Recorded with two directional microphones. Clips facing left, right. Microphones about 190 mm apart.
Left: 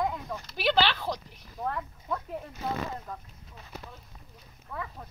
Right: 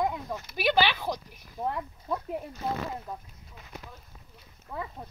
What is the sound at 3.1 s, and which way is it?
Speech, 10° right (ahead or behind).